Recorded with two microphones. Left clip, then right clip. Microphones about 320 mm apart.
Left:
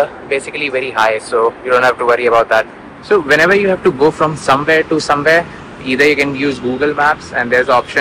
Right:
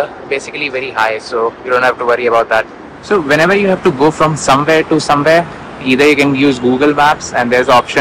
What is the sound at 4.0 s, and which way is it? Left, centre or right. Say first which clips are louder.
Speech: right 1 dB; right.